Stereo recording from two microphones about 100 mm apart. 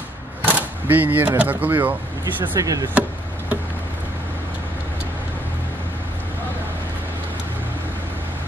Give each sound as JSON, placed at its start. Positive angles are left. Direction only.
{"t": 0.4, "sound": "speech", "side_deg": -15}
{"t": 2.6, "sound": "speech", "side_deg": -35}
{"t": 2.9, "sound": "chop", "side_deg": -15}